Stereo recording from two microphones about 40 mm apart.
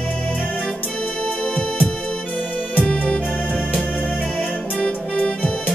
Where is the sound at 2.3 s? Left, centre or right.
Left.